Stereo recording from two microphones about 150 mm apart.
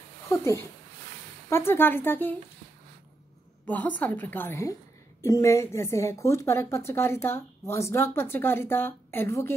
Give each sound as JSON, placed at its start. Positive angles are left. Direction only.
{"t": 0.3, "sound": "a woman's voice", "side_deg": 20}
{"t": 3.6, "sound": "a woman's voice", "side_deg": 10}